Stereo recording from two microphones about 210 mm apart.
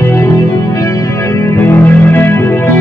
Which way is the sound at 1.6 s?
10° left (ahead or behind).